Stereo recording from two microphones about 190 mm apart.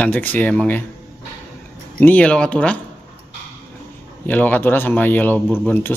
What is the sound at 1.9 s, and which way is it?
Speech, 10° left (ahead or behind).